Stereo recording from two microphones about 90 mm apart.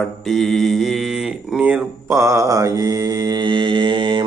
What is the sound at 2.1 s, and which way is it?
Mantra, 35° right (ahead or behind).